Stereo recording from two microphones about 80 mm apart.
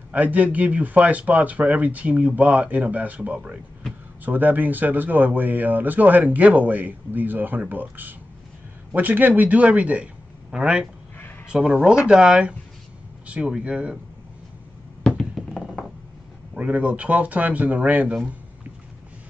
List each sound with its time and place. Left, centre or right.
0.1 s speech: centre
4.2 s speech: right
15.0 s a sound: centre
16.5 s speech: centre